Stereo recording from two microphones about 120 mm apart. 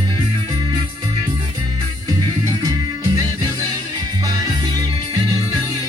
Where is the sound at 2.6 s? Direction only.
35° right (ahead or behind).